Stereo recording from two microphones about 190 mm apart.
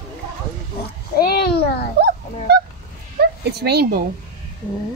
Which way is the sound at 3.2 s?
60° right (ahead or behind).